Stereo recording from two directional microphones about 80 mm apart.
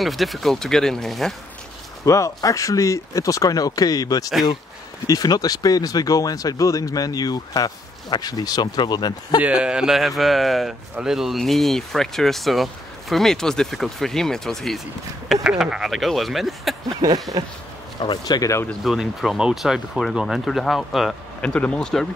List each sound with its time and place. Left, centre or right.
0.0 s speech: centre
2.0 s speech: left
9.4 s speech: centre
15.4 s speech: centre
17.0 s speech: right
18.0 s speech: left
18.9 s speech: centre
21.4 s speech: centre